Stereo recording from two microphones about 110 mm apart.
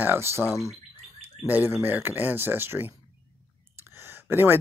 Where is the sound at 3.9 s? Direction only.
20° right (ahead or behind).